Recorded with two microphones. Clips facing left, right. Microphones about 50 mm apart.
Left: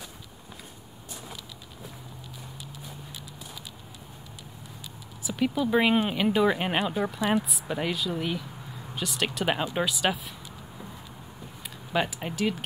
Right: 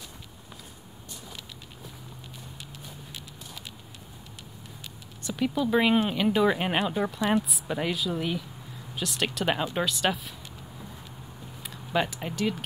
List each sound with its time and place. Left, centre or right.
5.2 s speech: centre
11.6 s speech: centre